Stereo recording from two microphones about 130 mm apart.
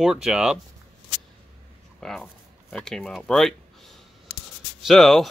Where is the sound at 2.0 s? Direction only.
Centre (ahead or behind).